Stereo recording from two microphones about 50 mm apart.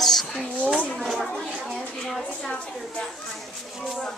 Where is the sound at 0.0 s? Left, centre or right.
Centre.